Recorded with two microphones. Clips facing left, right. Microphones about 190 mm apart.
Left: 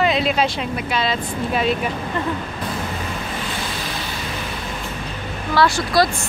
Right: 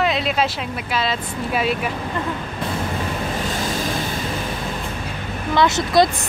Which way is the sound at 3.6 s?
45° right (ahead or behind).